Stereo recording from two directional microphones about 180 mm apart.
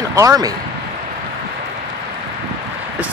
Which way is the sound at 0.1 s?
20° right (ahead or behind).